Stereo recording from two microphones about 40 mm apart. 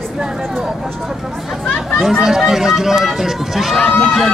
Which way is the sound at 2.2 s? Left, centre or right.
Centre.